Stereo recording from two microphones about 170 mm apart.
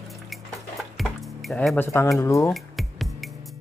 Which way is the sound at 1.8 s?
15° left (ahead or behind).